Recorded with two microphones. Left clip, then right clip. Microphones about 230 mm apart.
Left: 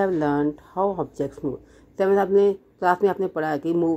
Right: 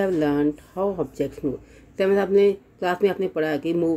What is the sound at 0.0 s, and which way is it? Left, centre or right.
Speech, centre.